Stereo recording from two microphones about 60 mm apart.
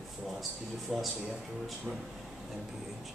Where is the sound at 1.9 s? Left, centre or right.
Centre.